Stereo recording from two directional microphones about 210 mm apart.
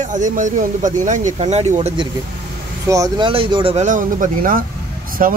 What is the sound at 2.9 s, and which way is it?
Speech, 15° right (ahead or behind).